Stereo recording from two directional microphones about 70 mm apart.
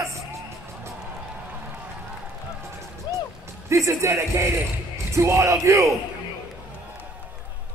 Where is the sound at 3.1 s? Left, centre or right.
Left.